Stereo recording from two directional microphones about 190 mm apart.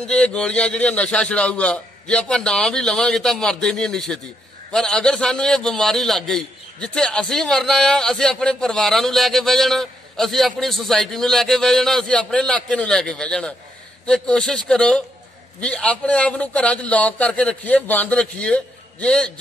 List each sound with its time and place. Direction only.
0.1 s a man's voice: 5° left (ahead or behind)